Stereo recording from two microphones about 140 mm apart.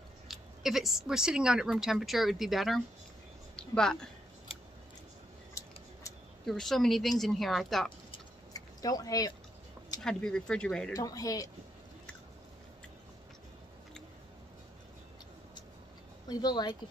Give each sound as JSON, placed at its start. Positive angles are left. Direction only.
{"t": 0.3, "sound": "a woman's voice", "side_deg": 0}
{"t": 6.4, "sound": "speech", "side_deg": 5}
{"t": 8.5, "sound": "speech", "side_deg": 25}
{"t": 10.0, "sound": "speech", "side_deg": 5}
{"t": 10.9, "sound": "speech", "side_deg": 25}
{"t": 16.3, "sound": "speech", "side_deg": 30}